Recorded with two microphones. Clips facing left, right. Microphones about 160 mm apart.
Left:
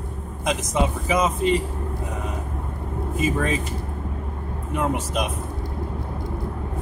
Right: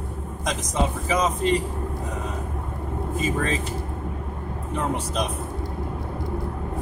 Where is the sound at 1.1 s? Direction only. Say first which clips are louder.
Left 2 dB; 5° left (ahead or behind).